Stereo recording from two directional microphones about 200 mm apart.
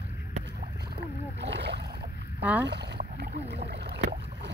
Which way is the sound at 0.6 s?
60° right (ahead or behind).